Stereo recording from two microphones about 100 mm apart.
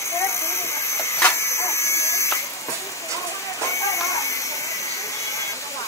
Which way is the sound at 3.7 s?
30° left (ahead or behind).